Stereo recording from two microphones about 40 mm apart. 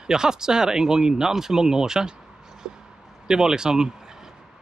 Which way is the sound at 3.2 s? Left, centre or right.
Centre.